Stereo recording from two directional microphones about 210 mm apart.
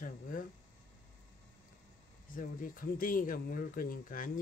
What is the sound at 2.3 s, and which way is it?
Speech, 40° left (ahead or behind).